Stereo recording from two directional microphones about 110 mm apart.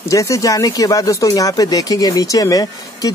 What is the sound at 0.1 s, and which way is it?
Speech, 30° left (ahead or behind).